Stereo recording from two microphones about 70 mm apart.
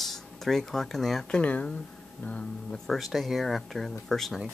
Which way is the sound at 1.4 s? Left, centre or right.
Centre.